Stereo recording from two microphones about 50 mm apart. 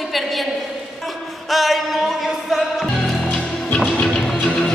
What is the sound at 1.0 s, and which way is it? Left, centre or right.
Music, centre.